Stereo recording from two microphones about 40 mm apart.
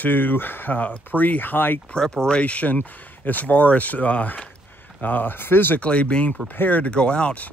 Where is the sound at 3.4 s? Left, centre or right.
Left.